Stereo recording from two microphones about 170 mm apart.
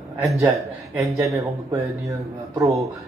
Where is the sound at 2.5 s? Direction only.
20° right (ahead or behind).